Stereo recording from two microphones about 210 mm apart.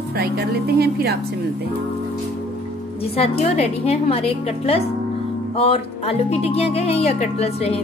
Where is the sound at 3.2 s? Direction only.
30° left (ahead or behind).